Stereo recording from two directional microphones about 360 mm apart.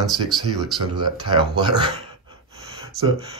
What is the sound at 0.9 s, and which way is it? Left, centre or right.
Speech, centre.